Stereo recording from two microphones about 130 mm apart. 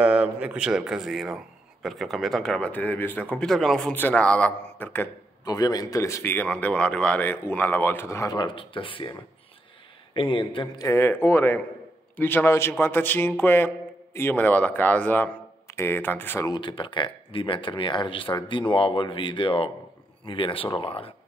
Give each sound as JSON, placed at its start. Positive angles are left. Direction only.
{"t": 0.0, "sound": "a man's voice", "side_deg": -10}
{"t": 3.9, "sound": "a man's voice", "side_deg": 10}
{"t": 5.4, "sound": "a man's voice", "side_deg": 30}
{"t": 10.1, "sound": "speech", "side_deg": 40}
{"t": 10.8, "sound": "a man's voice", "side_deg": 20}
{"t": 16.4, "sound": "speech", "side_deg": 35}